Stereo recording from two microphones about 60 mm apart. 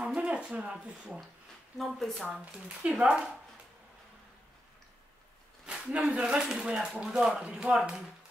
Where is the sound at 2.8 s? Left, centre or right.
Centre.